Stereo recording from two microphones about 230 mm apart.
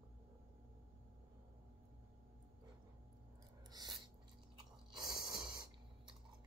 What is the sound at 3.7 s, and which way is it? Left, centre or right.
Filing, centre.